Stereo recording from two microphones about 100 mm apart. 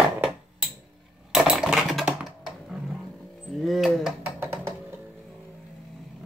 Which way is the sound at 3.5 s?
Centre (ahead or behind).